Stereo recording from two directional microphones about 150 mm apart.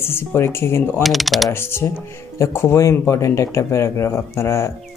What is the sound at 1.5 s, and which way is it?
Speech, 15° left (ahead or behind).